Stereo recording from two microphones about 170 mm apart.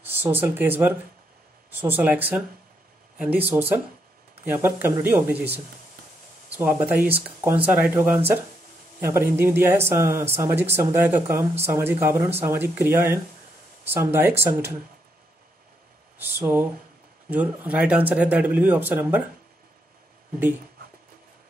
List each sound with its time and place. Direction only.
0.1 s speech: 10° right (ahead or behind)
6.5 s speech: 10° right (ahead or behind)
16.2 s speech: 10° right (ahead or behind)